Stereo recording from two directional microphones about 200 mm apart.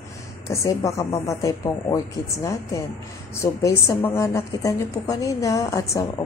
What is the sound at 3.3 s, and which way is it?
A woman's voice, 15° left (ahead or behind).